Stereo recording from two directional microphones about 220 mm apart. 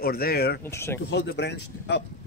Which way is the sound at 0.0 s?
45° left (ahead or behind).